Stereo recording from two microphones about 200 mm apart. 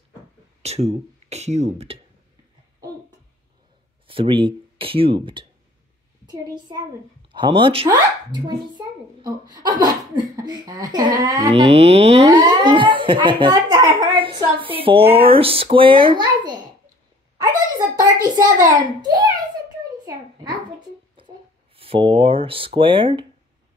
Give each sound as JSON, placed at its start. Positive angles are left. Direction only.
{"t": 0.6, "sound": "speech", "side_deg": -35}
{"t": 4.1, "sound": "a child's voice", "side_deg": -25}
{"t": 11.6, "sound": "a child's voice", "side_deg": -30}
{"t": 17.7, "sound": "a sound", "side_deg": -20}
{"t": 18.4, "sound": "a child's voice", "side_deg": -40}
{"t": 18.9, "sound": "a child's voice", "side_deg": -20}
{"t": 21.7, "sound": "a child's voice", "side_deg": -25}